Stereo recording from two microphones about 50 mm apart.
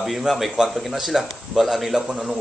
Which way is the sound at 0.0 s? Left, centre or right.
Centre.